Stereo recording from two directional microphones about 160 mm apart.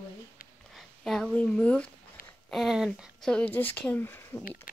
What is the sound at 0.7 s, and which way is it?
Speech, centre (ahead or behind).